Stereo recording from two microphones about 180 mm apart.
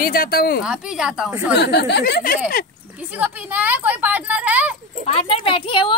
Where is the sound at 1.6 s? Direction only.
70° left (ahead or behind).